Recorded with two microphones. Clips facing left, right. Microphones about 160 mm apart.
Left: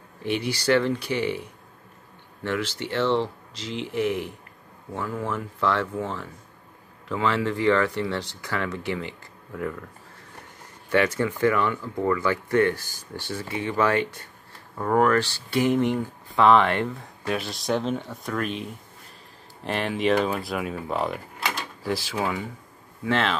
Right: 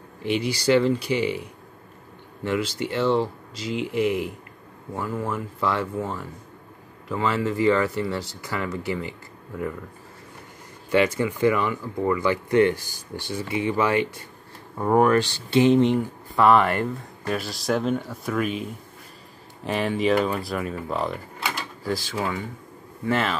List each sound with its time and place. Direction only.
0.4 s speech: 10° right (ahead or behind)
2.4 s speech: 10° right (ahead or behind)
10.9 s speech: 10° right (ahead or behind)
16.3 s speech: 5° right (ahead or behind)
23.0 s speech: 5° right (ahead or behind)